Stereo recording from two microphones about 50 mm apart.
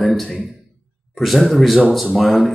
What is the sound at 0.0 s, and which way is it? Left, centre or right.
A man's voice, centre.